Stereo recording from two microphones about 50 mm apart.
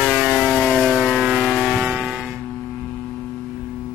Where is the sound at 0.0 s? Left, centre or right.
Right.